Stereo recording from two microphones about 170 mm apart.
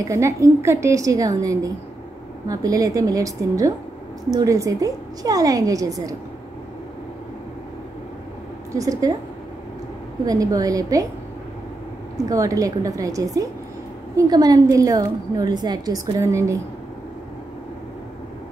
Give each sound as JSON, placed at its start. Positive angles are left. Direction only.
{"t": 0.0, "sound": "a woman's voice", "side_deg": -15}
{"t": 8.7, "sound": "a woman's voice", "side_deg": -20}
{"t": 10.2, "sound": "a woman's voice", "side_deg": -20}
{"t": 12.2, "sound": "a woman's voice", "side_deg": -20}